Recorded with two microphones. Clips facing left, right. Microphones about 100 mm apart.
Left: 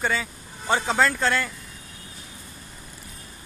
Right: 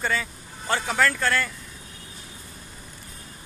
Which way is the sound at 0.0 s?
15° left (ahead or behind).